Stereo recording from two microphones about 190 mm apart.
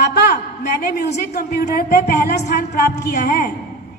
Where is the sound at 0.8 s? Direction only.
60° left (ahead or behind).